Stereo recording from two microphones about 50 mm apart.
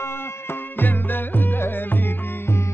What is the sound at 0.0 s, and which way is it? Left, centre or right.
Music, left.